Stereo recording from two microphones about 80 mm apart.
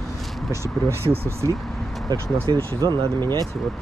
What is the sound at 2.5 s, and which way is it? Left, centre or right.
Speech, right.